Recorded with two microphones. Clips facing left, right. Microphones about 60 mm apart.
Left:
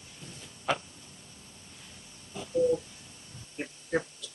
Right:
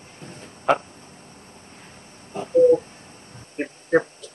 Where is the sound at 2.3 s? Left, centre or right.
Right.